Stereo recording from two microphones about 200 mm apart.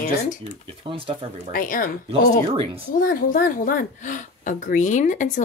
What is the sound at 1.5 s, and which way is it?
Speech, 45° left (ahead or behind).